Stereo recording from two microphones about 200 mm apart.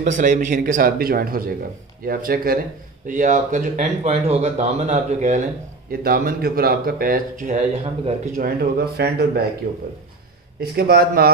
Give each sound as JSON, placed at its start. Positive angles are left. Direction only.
{"t": 0.0, "sound": "speech", "side_deg": -40}
{"t": 8.4, "sound": "speech", "side_deg": -50}
{"t": 10.8, "sound": "speech", "side_deg": -50}